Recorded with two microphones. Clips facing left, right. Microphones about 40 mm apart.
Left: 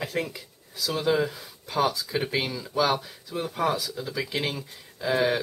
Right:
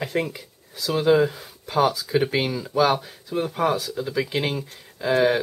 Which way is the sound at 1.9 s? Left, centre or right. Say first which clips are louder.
Right 6 dB; right.